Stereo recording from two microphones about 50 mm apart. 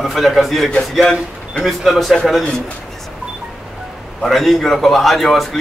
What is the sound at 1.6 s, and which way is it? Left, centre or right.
Speech, centre.